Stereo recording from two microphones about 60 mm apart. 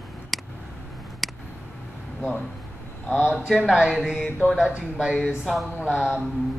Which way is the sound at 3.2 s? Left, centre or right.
Centre.